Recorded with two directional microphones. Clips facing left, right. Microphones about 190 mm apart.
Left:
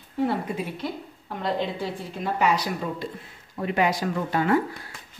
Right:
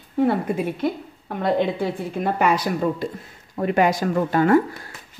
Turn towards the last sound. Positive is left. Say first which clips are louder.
# right 6 dB
turn(degrees=-50)  # may be behind; listen again after turning